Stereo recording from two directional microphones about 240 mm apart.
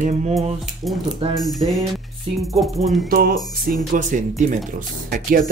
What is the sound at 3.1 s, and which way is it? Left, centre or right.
Speech, right.